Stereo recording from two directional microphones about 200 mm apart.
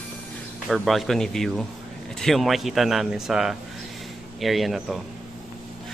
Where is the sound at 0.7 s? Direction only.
Centre (ahead or behind).